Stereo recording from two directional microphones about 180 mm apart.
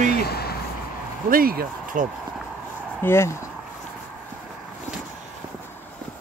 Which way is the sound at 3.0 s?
15° left (ahead or behind).